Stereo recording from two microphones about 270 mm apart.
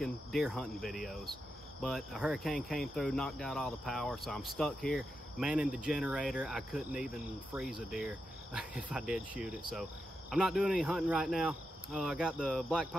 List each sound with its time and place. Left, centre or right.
0.0 s cricket: centre